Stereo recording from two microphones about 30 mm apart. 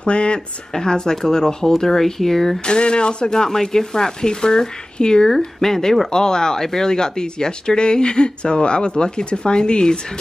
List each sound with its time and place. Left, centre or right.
0.0 s speech: left
0.7 s speech: left
2.6 s speech: left
5.6 s speech: centre